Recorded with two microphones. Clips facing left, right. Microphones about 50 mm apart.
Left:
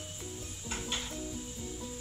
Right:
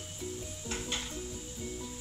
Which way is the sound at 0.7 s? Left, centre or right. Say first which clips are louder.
Even; centre.